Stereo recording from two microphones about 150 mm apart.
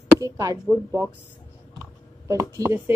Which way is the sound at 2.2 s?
20° right (ahead or behind).